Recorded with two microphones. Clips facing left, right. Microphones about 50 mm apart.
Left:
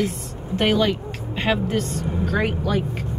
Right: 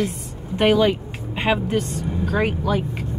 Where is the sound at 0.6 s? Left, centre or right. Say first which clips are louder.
Right 3 dB; centre.